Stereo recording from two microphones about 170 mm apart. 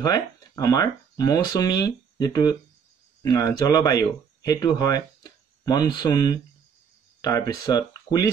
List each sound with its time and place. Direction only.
0.0 s speech: 20° left (ahead or behind)